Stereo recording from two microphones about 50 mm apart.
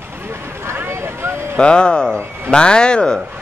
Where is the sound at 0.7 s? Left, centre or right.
Right.